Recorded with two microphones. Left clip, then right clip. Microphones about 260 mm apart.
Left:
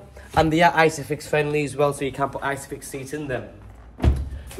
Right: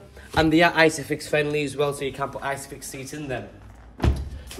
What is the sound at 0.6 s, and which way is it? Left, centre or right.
Speech, centre.